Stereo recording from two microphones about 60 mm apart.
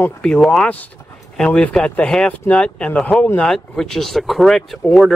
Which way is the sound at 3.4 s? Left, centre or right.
Centre.